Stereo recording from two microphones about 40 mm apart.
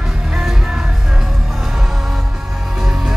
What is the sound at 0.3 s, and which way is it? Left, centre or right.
Music, centre.